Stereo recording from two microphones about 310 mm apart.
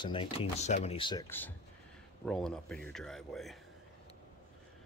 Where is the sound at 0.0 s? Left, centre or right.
Centre.